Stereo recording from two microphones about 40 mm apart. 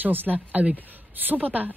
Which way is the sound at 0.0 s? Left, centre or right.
Right.